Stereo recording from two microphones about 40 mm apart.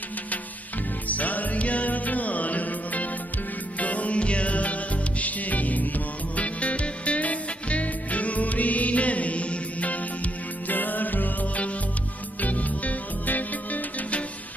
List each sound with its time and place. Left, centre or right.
1.0 s music: left